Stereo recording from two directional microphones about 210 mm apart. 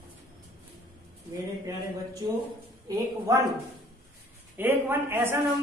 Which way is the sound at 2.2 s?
15° right (ahead or behind).